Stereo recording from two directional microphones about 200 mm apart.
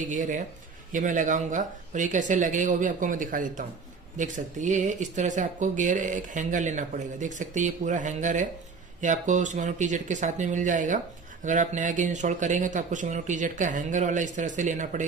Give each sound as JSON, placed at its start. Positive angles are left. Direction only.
{"t": 0.0, "sound": "speech", "side_deg": -40}